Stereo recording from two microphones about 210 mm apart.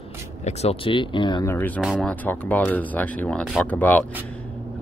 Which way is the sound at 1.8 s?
Centre (ahead or behind).